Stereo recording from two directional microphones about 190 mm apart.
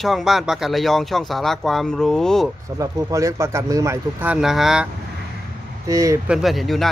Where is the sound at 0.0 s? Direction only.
Centre (ahead or behind).